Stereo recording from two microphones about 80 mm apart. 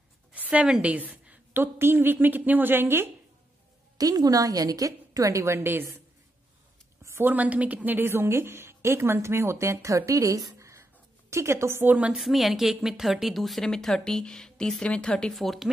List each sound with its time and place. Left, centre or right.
0.3 s a sound: centre
1.5 s a woman's voice: right
4.0 s a woman's voice: right
7.2 s a woman's voice: centre
12.1 s speech: centre